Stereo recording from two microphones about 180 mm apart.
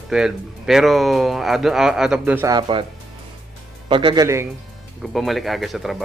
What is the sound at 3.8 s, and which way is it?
Speech, 25° right (ahead or behind).